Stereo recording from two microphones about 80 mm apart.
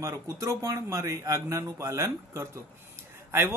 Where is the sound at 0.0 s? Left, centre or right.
Right.